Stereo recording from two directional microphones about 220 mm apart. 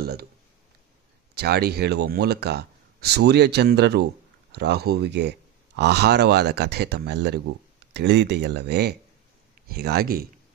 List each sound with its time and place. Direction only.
0.0 s speech: 45° right (ahead or behind)
1.3 s speech: 45° right (ahead or behind)